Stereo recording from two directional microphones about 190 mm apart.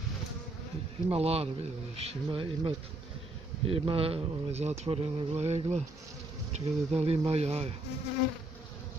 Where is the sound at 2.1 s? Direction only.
25° right (ahead or behind).